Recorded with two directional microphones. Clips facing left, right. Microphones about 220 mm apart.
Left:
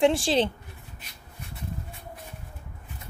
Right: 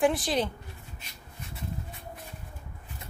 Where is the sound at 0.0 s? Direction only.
30° left (ahead or behind).